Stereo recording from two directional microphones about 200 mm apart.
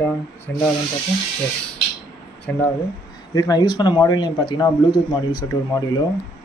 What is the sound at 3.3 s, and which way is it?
A man's voice, 20° left (ahead or behind).